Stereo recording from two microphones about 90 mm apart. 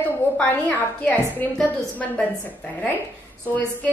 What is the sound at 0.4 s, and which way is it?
A woman's voice, 20° left (ahead or behind).